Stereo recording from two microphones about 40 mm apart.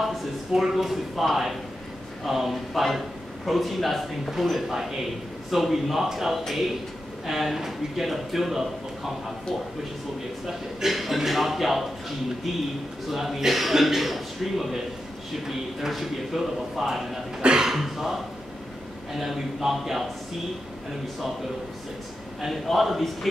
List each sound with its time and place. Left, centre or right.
0.0 s speech: centre
10.4 s speech: centre
13.1 s speech: centre
15.9 s speech: centre
17.4 s speech: centre
17.6 s speech: centre
22.5 s speech: centre